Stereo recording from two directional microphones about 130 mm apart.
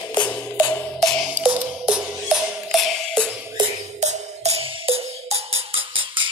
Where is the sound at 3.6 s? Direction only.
35° right (ahead or behind).